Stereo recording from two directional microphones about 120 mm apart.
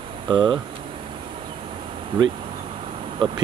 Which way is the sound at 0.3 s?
40° right (ahead or behind).